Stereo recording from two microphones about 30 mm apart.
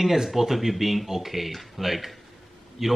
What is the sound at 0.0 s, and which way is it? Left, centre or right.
A man's voice, centre.